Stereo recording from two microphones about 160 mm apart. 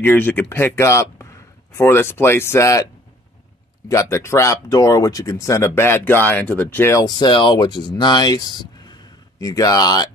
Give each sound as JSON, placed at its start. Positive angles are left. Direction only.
{"t": 0.0, "sound": "speech", "side_deg": 10}
{"t": 3.9, "sound": "speech", "side_deg": 15}